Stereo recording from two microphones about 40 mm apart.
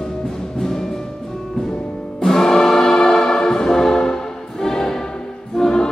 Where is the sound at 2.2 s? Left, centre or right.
Centre.